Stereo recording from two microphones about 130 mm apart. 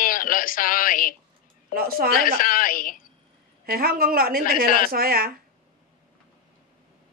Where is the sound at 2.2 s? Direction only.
90° left.